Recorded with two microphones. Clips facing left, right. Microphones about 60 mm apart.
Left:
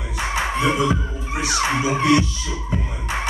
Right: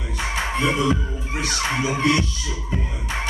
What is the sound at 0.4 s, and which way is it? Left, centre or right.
Music, left.